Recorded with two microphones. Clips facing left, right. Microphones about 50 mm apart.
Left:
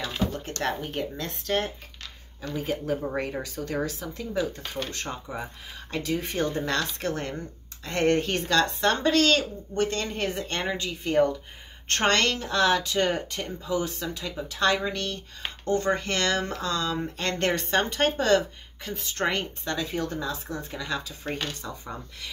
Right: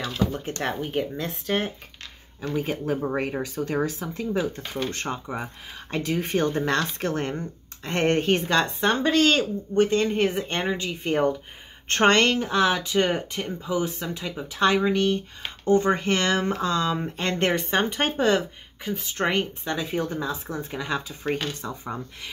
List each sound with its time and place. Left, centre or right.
0.3 s speech: centre
2.4 s speech: right